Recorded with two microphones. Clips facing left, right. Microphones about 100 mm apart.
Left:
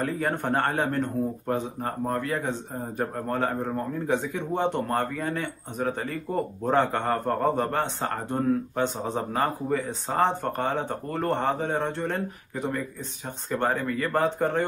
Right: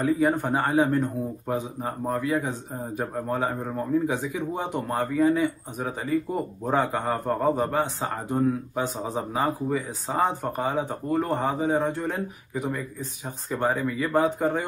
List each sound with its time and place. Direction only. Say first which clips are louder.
0.0 s a man's voice: right 4 dB; 5° right (ahead or behind)